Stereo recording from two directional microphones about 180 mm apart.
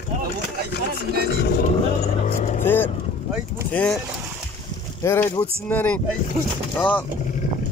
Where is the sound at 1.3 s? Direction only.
70° left (ahead or behind).